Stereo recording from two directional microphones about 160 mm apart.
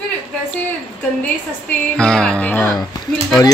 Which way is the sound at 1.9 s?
5° left (ahead or behind).